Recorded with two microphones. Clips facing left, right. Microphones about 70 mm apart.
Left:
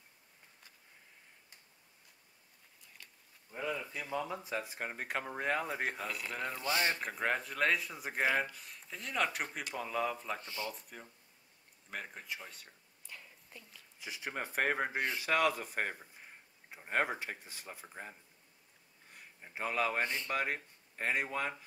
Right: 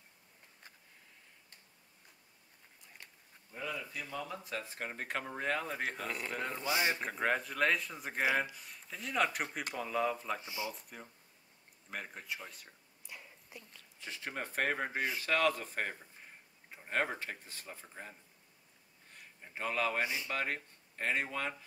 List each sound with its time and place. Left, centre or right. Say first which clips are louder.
3.9 s speech: left 3 dB; centre
6.6 s speech: even; centre
7.0 s speech: right 1 dB; centre
10.4 s speech: right 1 dB; centre
10.7 s speech: even; centre
11.9 s a sound: even; centre
13.7 s speech: left 1 dB; centre
15.0 s speech: even; centre
15.2 s speech: even; centre
19.4 s speech: left 1 dB; centre
20.0 s speech: even; centre
20.2 s speech: left 1 dB; centre